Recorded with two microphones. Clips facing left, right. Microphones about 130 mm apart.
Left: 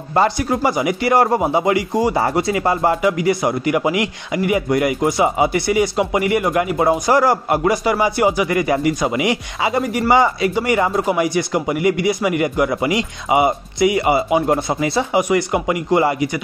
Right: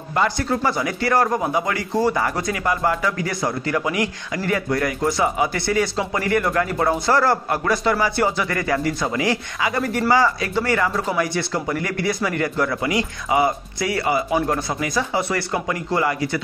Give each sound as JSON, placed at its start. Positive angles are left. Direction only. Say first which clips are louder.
{"t": 0.7, "sound": "speech", "louder": "left 6 dB", "side_deg": 20}
{"t": 2.1, "sound": "speech", "louder": "left 5 dB", "side_deg": 25}